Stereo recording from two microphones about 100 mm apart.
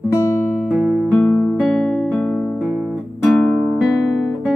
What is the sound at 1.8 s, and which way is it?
Music, 5° left (ahead or behind).